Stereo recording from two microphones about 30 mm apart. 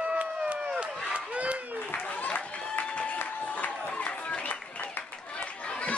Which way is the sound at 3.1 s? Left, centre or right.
Left.